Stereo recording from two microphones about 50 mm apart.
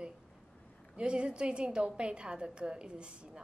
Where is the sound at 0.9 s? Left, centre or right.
Right.